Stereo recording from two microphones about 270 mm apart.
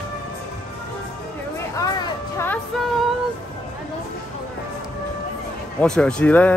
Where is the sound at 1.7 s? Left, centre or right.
Centre.